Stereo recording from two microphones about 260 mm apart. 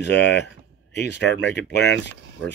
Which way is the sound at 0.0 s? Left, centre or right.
Left.